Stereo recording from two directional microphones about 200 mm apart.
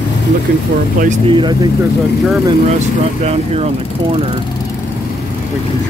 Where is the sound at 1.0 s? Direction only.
25° right (ahead or behind).